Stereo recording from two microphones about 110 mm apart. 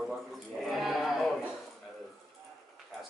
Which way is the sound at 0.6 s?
Centre (ahead or behind).